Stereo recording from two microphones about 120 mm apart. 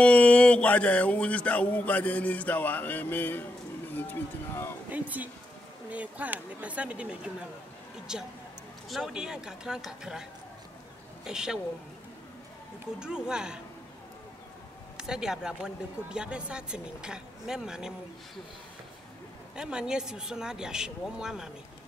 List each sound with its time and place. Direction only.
0.0 s music: 10° left (ahead or behind)
4.9 s speech: 15° right (ahead or behind)
11.2 s speech: 5° right (ahead or behind)
13.0 s speech: 5° right (ahead or behind)
15.0 s speech: 5° right (ahead or behind)
19.5 s speech: 5° right (ahead or behind)